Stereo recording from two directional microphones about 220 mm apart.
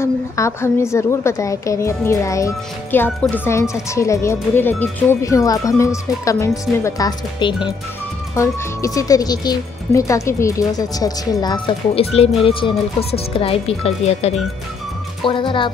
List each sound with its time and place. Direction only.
0.0 s speech: 10° left (ahead or behind)